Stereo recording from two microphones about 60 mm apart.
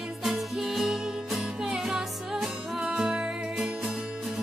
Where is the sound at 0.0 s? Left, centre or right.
Centre.